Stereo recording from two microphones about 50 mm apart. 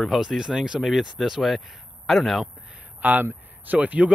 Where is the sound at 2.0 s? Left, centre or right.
Centre.